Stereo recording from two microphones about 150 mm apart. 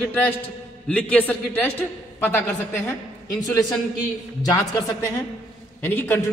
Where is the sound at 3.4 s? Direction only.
25° left (ahead or behind).